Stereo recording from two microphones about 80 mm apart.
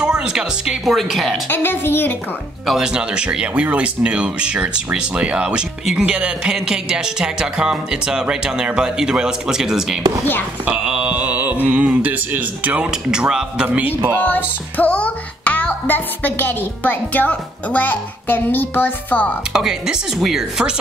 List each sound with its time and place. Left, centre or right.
0.0 s speech: centre
1.5 s a child's voice: left
2.6 s speech: centre
10.6 s mantra: centre
11.6 s speech: centre
13.7 s a man's voice: right
14.2 s music: left
16.8 s a child's voice: left
19.5 s speech: centre